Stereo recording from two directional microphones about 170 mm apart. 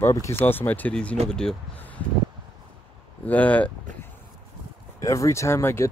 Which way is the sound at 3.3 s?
10° left (ahead or behind).